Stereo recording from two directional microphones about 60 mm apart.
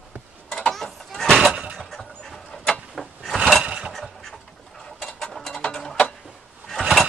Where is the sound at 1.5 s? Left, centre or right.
Centre.